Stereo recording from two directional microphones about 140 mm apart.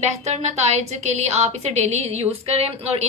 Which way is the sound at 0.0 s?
55° right (ahead or behind).